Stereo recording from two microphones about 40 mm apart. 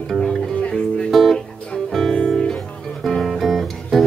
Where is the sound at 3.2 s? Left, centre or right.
Centre.